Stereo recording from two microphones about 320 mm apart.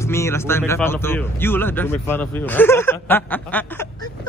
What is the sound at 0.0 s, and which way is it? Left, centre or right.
Speech, centre.